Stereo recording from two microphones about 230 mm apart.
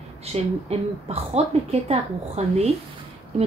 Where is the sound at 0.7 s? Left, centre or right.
Right.